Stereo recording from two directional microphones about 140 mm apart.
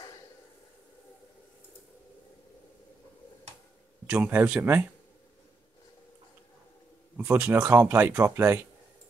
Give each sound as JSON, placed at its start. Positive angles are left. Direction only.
{"t": 4.1, "sound": "speech", "side_deg": -10}
{"t": 7.2, "sound": "speech", "side_deg": -15}